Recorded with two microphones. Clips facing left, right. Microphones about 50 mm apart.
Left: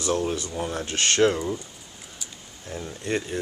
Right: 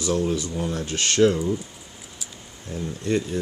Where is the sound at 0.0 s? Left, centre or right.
Left.